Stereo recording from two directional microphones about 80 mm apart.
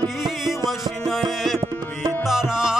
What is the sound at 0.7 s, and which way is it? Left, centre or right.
Music, centre.